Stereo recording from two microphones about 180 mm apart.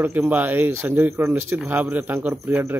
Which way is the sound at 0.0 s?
10° right (ahead or behind).